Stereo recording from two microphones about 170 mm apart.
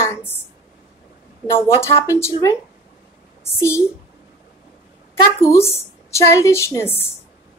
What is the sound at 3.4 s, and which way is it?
Speech, 15° left (ahead or behind).